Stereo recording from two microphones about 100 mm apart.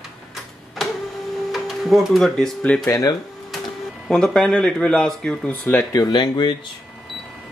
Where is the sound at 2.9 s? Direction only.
35° left (ahead or behind).